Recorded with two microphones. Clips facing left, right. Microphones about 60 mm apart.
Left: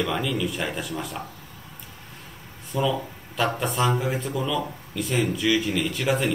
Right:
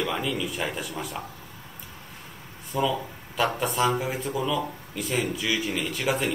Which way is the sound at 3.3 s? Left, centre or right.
Centre.